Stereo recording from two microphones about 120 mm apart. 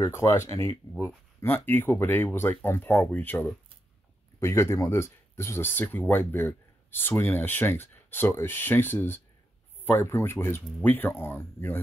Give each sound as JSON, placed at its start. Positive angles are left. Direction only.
{"t": 0.0, "sound": "speech", "side_deg": 25}